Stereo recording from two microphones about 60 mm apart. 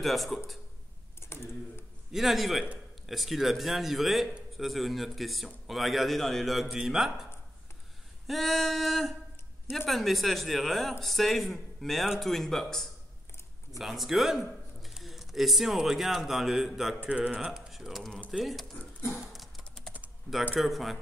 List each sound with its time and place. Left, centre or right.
0.0 s a man's voice: centre
1.2 s typing: left
2.1 s a man's voice: centre
8.3 s a man's voice: centre
17.0 s speech: centre
19.3 s typing: centre
20.5 s a man's voice: centre